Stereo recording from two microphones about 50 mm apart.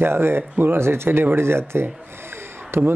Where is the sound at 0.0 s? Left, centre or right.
Right.